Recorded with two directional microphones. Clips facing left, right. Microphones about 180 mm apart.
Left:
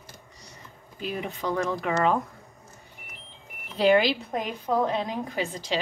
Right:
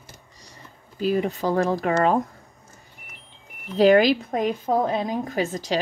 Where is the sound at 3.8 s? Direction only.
45° right (ahead or behind).